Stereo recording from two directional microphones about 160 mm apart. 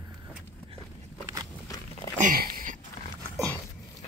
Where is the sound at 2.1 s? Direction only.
60° right (ahead or behind).